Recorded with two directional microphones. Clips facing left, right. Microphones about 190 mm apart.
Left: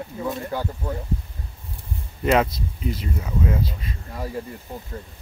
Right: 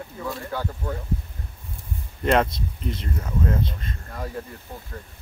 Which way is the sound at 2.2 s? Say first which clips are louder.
Left 1 dB; 5° left (ahead or behind).